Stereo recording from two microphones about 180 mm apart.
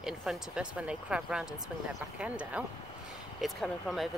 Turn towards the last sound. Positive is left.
turn(degrees=0)  # may be behind; listen again after turning